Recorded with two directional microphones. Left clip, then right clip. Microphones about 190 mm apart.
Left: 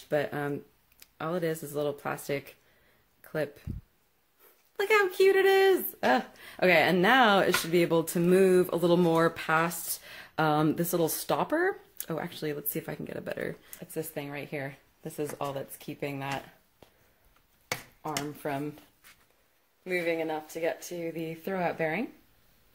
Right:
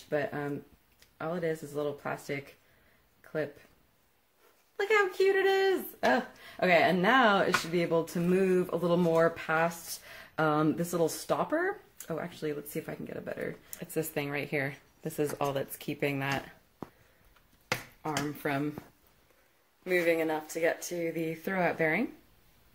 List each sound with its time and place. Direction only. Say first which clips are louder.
0.1 s speech: left 3 dB; 45° left (ahead or behind)
4.7 s speech: left 2 dB; 40° left (ahead or behind)
7.5 s speech: left 3 dB; centre (ahead or behind)
7.8 s speech: left 3 dB; 40° left (ahead or behind)
8.2 s speech: left 8 dB; centre (ahead or behind)
8.5 s speech: left 4 dB; 45° left (ahead or behind)
13.7 s speech: right 2 dB; 5° right (ahead or behind)
17.7 s speech: right 1 dB; centre (ahead or behind)
19.8 s speech: right 2 dB; 10° left (ahead or behind)